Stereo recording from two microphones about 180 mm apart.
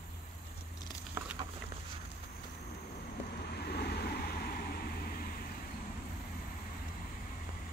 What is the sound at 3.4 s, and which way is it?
Vehicle, 60° left (ahead or behind).